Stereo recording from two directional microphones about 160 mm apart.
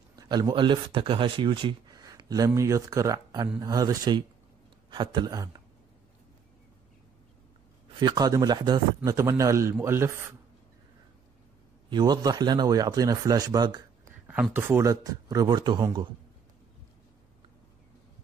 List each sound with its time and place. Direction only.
0.1 s speech: 25° right (ahead or behind)
8.0 s speech: 25° right (ahead or behind)
11.9 s speech: 25° right (ahead or behind)
14.2 s speech: 10° right (ahead or behind); by 16.1 s 30° right (ahead or behind)